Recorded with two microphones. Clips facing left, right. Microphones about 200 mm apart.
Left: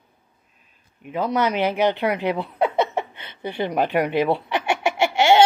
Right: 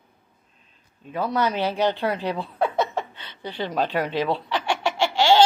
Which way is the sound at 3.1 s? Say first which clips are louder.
Left 4 dB; 55° left (ahead or behind).